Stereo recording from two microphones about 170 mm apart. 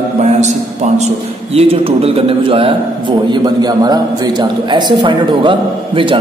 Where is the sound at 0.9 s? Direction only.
40° right (ahead or behind).